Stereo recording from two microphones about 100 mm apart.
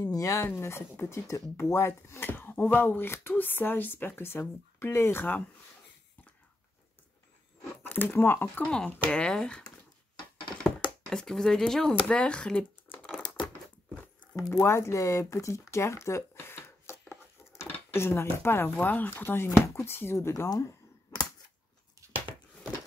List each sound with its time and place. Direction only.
0.0 s speech: 35° left (ahead or behind)
7.8 s speech: 20° left (ahead or behind)
8.6 s speech: 10° left (ahead or behind)
11.1 s speech: 5° left (ahead or behind)
14.3 s speech: 35° left (ahead or behind)
20.4 s cap gun: 35° left (ahead or behind)